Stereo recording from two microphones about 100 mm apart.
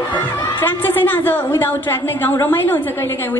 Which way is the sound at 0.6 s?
20° left (ahead or behind).